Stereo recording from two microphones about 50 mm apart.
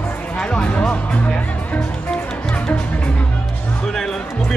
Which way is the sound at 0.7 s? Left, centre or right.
Left.